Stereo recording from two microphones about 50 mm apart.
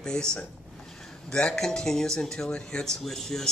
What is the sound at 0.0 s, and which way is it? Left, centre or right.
Speech, centre.